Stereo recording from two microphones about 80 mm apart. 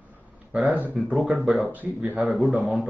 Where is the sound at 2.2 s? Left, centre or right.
Centre.